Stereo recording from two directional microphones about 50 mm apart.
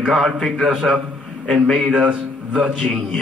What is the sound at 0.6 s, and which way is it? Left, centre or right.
A man's voice, centre.